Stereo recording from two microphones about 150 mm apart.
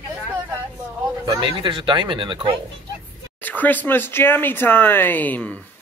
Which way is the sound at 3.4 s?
10° left (ahead or behind).